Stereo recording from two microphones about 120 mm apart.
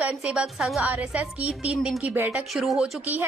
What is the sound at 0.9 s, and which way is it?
A woman's voice, 10° right (ahead or behind).